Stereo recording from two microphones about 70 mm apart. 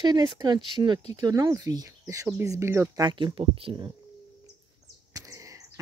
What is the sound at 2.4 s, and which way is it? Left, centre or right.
Speech, right.